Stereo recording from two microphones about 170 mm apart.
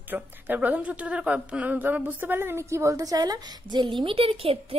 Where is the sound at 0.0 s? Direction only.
10° right (ahead or behind).